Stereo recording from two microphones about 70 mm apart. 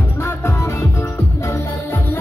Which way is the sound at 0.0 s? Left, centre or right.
Left.